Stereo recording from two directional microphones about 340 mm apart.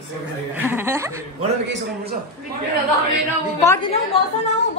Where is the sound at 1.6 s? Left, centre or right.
Right.